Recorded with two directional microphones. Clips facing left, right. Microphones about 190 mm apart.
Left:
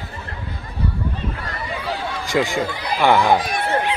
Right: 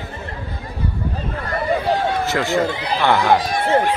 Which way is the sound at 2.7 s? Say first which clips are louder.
Right 3 dB; 25° right (ahead or behind).